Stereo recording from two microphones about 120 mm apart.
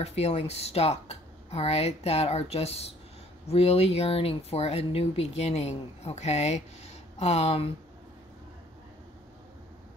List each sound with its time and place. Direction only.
0.0 s speech: 65° left (ahead or behind)